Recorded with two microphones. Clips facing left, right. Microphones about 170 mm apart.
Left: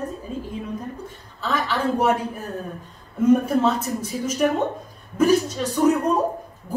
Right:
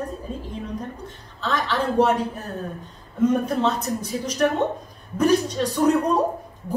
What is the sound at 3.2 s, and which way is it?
A woman's voice, 10° left (ahead or behind).